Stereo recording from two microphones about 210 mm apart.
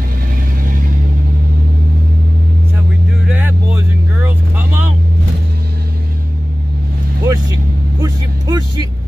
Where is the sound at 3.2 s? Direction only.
10° right (ahead or behind).